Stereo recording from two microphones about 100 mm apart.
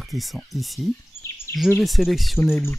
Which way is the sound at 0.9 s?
25° left (ahead or behind).